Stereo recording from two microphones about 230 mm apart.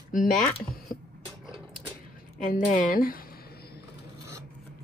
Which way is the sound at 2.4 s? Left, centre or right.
Left.